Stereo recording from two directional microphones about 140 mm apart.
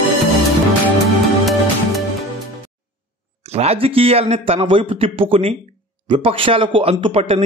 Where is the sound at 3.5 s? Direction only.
45° right (ahead or behind).